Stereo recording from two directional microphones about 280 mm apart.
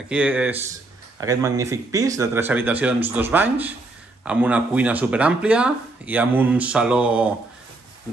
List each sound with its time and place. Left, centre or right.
0.1 s speech: centre